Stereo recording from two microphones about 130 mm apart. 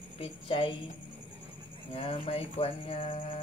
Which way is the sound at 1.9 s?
45° left (ahead or behind).